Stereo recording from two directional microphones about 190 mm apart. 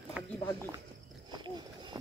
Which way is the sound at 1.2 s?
25° right (ahead or behind).